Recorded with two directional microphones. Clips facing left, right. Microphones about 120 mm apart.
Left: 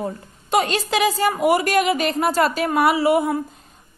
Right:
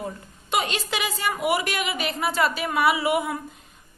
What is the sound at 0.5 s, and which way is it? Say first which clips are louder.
A woman's voice: left 6 dB; 40° left (ahead or behind).